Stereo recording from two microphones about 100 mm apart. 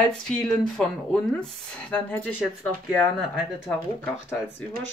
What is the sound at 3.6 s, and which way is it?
Speech, 20° left (ahead or behind).